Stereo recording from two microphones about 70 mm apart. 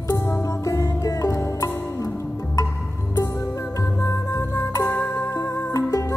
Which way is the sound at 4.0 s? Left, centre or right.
Left.